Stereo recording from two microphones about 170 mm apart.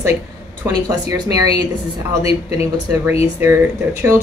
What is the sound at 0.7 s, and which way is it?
Speech, 20° right (ahead or behind).